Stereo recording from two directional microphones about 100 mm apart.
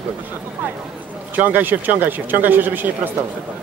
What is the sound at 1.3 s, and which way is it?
A man's voice, 20° right (ahead or behind).